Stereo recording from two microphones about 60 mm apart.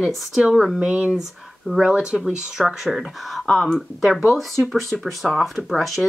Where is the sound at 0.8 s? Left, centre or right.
Centre.